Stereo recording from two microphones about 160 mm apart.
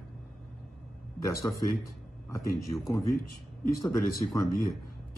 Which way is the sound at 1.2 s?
20° left (ahead or behind).